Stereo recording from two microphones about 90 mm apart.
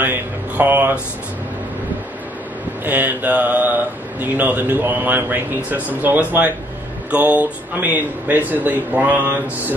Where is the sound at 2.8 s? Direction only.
20° right (ahead or behind).